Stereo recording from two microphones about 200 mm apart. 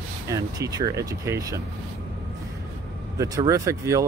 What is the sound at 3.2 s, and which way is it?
Speech, 15° right (ahead or behind).